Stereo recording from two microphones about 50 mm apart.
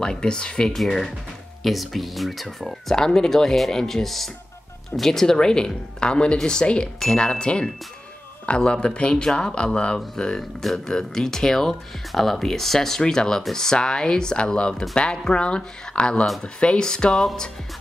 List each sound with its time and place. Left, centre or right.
0.0 s speech: centre